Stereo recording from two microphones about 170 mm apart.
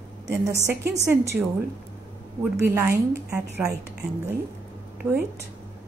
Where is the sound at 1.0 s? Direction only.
15° right (ahead or behind).